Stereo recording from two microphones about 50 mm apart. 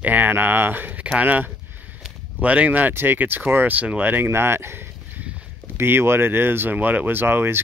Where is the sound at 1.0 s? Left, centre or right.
Right.